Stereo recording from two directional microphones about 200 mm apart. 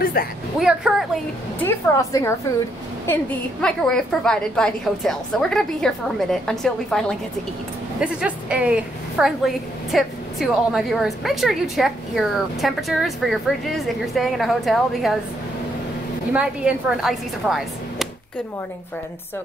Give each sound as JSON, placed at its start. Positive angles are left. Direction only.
{"t": 0.0, "sound": "a sound", "side_deg": 50}
{"t": 0.6, "sound": "a woman's voice", "side_deg": 0}
{"t": 1.6, "sound": "a woman's voice", "side_deg": 15}
{"t": 16.3, "sound": "a woman's voice", "side_deg": -5}